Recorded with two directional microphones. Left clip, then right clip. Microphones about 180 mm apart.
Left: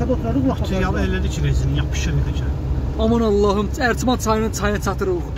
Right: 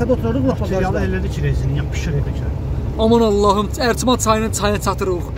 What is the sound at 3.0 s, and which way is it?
Speech, 15° right (ahead or behind).